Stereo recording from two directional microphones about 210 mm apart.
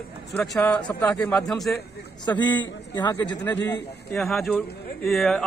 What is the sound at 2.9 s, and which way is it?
Speech, 20° left (ahead or behind).